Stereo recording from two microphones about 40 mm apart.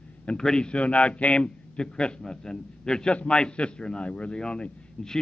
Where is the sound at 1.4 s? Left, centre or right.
Centre.